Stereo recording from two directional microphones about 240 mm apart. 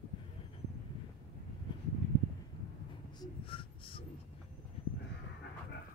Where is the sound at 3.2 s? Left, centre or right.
Left.